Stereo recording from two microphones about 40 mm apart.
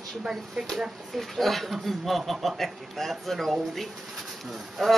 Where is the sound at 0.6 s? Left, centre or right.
Centre.